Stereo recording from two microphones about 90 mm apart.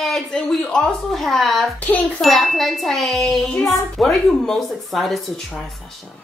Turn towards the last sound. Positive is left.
turn(degrees=0)  # may be behind; listen again after turning